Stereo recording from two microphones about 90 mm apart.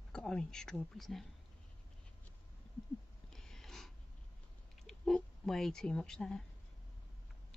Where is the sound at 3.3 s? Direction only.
5° left (ahead or behind).